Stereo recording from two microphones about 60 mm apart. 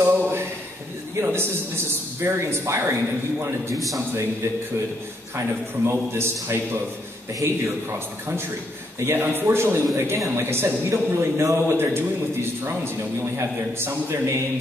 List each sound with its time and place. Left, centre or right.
0.0 s a sound: right
1.2 s a man's voice: right
3.7 s a man's voice: centre
5.9 s speech: right
7.4 s speech: right
9.0 s a man's voice: right